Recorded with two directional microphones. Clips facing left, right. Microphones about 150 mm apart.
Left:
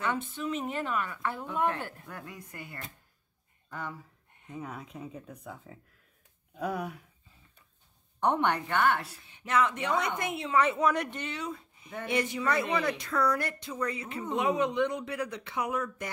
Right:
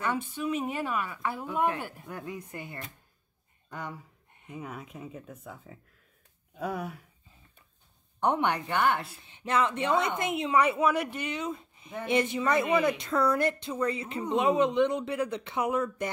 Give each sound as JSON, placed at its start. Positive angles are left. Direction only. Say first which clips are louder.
{"t": 0.0, "sound": "a woman's voice", "louder": "right 1 dB", "side_deg": -10}
{"t": 4.5, "sound": "speech", "louder": "even", "side_deg": -10}
{"t": 8.2, "sound": "a woman's voice", "louder": "even", "side_deg": -10}